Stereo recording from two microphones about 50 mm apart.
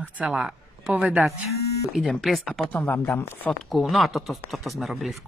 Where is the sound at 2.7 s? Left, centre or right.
Left.